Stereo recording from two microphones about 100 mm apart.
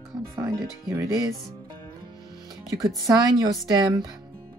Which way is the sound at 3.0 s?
40° right (ahead or behind).